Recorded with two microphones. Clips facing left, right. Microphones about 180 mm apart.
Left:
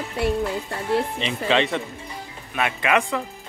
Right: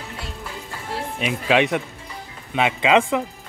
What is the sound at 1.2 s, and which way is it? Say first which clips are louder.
Speech: right 2 dB; 10° right (ahead or behind).